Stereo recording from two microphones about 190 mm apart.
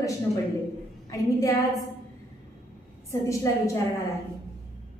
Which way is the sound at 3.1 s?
15° left (ahead or behind).